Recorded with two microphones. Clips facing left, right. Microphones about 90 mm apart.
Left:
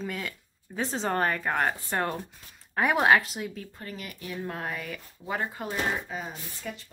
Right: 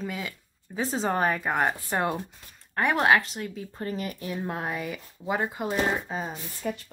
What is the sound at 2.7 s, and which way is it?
Speech, centre (ahead or behind).